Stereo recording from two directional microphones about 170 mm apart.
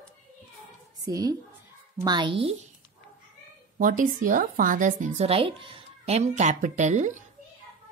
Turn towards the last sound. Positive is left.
turn(degrees=-45)  # may be behind; listen again after turning